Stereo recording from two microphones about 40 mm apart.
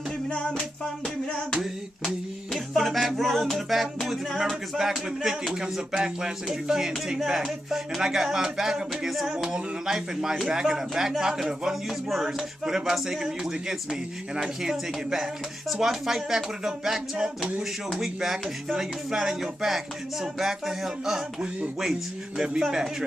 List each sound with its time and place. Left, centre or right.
0.3 s music: left
1.6 s a sound: centre
4.4 s music: centre
11.9 s a sound: centre
12.3 s music: centre
22.7 s music: centre